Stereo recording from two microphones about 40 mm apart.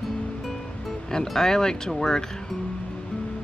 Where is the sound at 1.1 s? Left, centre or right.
Centre.